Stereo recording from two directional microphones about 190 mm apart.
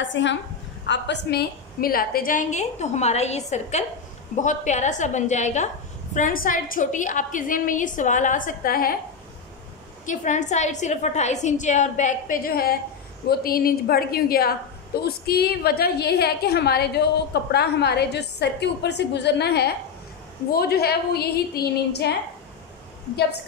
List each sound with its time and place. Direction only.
0.0 s a woman's voice: 70° left (ahead or behind); by 8.9 s 50° left (ahead or behind)
10.0 s a woman's voice: 40° left (ahead or behind); by 22.1 s 55° left (ahead or behind)